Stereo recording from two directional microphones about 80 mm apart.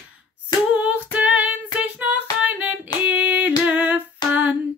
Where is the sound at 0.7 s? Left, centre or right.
Centre.